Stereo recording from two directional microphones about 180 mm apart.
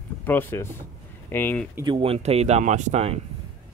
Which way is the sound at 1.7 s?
25° right (ahead or behind).